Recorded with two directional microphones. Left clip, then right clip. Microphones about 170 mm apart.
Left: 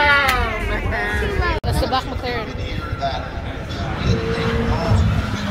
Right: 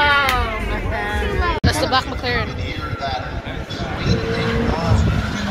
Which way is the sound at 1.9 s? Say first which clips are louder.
Right 3 dB; 10° left (ahead or behind).